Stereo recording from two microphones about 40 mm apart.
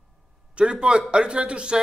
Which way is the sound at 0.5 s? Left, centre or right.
Right.